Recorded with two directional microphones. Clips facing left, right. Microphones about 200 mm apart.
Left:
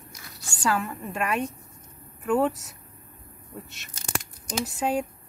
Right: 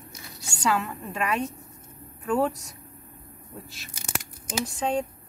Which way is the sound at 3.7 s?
Centre (ahead or behind).